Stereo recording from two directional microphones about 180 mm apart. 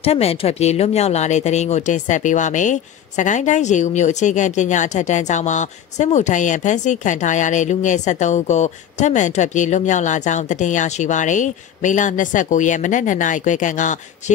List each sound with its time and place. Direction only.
0.0 s speech: 35° left (ahead or behind)